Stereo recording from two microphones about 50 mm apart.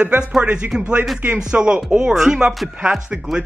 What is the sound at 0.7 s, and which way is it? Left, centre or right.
Speech, centre.